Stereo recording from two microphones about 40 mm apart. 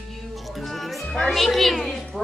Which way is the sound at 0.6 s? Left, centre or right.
Centre.